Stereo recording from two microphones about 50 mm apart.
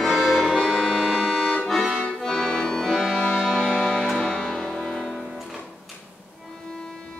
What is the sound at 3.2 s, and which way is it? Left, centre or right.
Music, centre.